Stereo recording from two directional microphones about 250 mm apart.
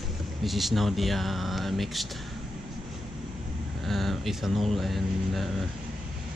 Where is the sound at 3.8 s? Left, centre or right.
Centre.